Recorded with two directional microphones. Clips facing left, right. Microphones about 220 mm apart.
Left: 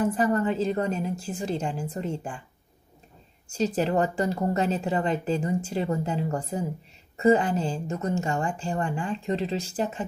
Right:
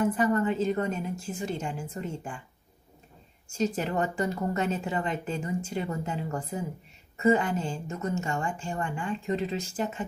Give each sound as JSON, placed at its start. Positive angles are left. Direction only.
{"t": 0.0, "sound": "a woman's voice", "side_deg": 35}
{"t": 3.5, "sound": "a woman's voice", "side_deg": 35}